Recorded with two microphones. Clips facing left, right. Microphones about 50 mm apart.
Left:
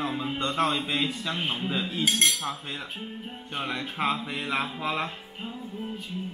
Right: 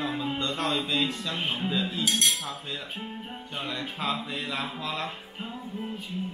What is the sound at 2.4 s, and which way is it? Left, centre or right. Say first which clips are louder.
Speech: left 2 dB; left.